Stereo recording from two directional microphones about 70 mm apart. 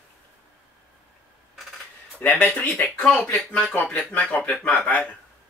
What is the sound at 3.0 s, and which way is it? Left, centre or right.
Speech, centre.